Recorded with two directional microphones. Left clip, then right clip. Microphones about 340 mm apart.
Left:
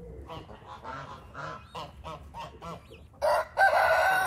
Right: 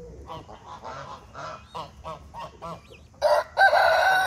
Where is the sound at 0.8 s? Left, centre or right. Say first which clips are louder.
Right 2 dB; centre.